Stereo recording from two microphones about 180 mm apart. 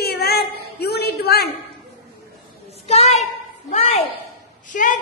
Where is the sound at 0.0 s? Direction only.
60° left (ahead or behind).